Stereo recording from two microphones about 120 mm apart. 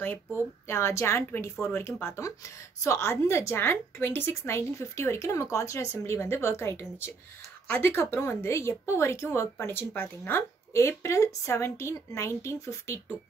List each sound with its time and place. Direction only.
0.0 s speech: 15° left (ahead or behind)